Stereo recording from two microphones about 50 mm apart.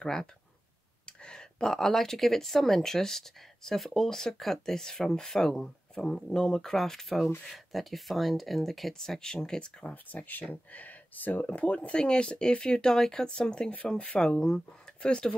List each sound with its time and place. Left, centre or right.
0.0 s speech: centre
10.5 s speech: left
11.4 s speech: left
14.4 s speech: centre